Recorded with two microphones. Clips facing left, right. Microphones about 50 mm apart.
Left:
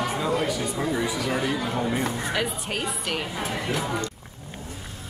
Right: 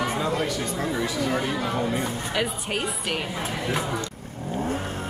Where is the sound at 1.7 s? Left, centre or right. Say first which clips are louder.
Even; centre.